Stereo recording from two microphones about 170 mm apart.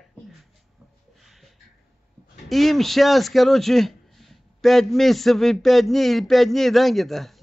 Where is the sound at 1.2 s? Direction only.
Centre (ahead or behind).